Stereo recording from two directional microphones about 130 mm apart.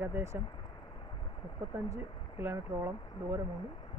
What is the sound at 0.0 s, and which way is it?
Speech, 20° right (ahead or behind).